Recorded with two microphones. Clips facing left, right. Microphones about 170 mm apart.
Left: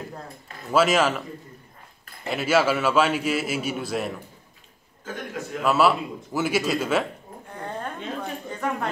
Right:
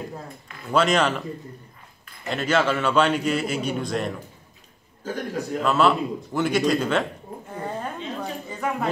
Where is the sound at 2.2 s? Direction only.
5° left (ahead or behind).